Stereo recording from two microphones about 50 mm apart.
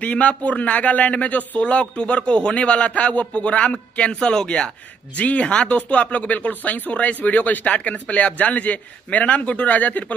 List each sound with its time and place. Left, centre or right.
0.0 s speech: left
5.1 s speech: left